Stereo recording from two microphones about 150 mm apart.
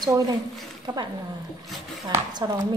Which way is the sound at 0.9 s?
25° right (ahead or behind).